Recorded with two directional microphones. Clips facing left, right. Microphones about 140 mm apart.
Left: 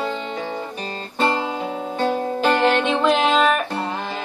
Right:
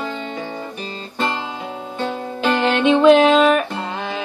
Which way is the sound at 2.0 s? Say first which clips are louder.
Left 2 dB; 40° left (ahead or behind).